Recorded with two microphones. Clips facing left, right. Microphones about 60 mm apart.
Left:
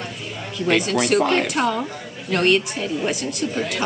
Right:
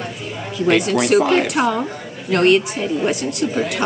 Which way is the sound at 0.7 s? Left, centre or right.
Centre.